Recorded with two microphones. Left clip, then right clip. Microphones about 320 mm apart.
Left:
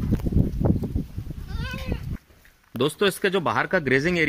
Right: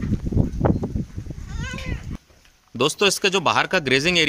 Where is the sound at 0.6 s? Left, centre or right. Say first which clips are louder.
Right 5 dB; right.